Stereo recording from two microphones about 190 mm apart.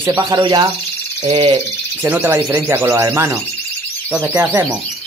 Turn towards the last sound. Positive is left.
turn(degrees=-10)  # may be behind; listen again after turning